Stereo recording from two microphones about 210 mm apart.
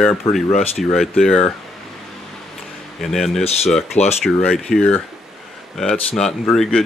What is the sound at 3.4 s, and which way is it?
Speech, 30° left (ahead or behind).